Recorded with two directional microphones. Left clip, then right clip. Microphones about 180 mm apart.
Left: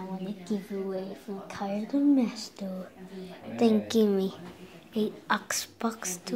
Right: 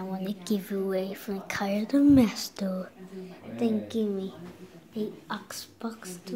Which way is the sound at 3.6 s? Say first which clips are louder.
Left 5 dB; 10° left (ahead or behind).